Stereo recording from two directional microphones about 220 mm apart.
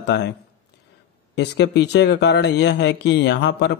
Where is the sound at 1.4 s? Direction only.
50° left (ahead or behind).